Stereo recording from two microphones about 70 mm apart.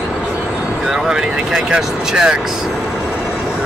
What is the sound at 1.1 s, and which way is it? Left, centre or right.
Speech, centre.